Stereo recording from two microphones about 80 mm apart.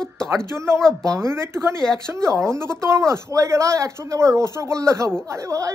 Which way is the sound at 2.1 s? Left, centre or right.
Right.